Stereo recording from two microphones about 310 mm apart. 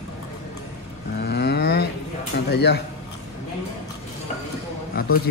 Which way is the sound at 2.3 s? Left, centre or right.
Left.